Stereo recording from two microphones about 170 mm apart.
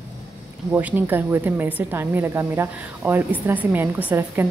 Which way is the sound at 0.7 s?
10° right (ahead or behind).